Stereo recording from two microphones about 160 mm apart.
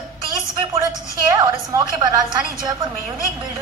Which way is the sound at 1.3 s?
25° right (ahead or behind).